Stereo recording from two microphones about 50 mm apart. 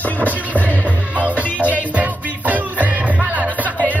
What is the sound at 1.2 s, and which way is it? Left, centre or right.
Music, right.